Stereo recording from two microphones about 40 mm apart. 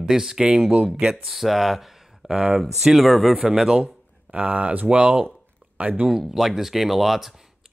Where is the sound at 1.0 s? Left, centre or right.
Centre.